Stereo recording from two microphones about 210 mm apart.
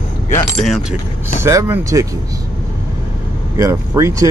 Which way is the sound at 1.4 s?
15° right (ahead or behind).